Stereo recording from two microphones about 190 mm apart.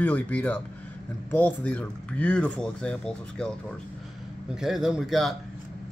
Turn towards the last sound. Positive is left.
turn(degrees=0)  # may be behind; listen again after turning